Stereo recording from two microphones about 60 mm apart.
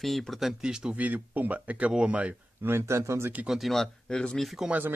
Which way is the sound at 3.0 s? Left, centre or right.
Right.